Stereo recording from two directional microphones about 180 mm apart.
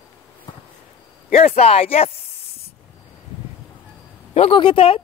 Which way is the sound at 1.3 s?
35° left (ahead or behind).